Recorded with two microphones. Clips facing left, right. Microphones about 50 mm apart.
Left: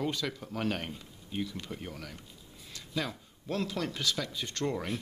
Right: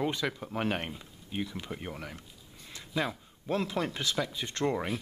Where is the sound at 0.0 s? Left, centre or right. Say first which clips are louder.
Right 2 dB; centre.